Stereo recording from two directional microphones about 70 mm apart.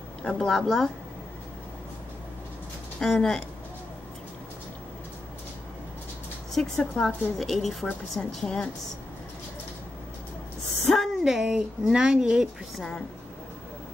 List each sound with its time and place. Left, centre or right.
0.2 s speech: centre
3.0 s speech: centre
6.5 s a woman's voice: centre
10.9 s speech: centre
12.7 s a woman's voice: centre